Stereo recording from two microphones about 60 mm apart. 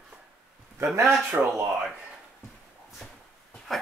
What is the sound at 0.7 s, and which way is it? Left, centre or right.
Speech, right.